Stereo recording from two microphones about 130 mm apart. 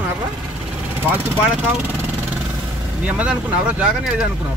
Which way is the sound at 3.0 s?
10° right (ahead or behind).